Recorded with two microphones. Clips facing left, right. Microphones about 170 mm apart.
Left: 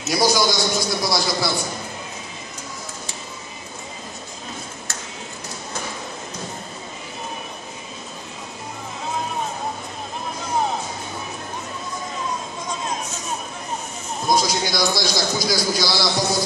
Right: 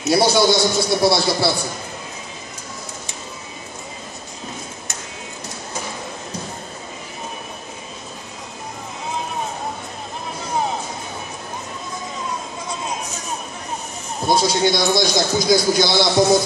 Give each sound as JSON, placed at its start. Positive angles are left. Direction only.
{"t": 0.1, "sound": "a man's voice", "side_deg": -30}
{"t": 14.2, "sound": "a sound", "side_deg": -30}
{"t": 15.0, "sound": "a man's voice", "side_deg": -20}